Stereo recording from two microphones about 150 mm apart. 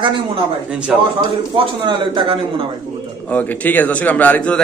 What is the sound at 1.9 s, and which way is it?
Speech, 35° right (ahead or behind).